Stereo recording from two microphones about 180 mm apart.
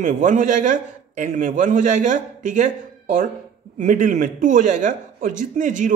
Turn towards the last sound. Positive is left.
turn(degrees=-45)  # may be behind; listen again after turning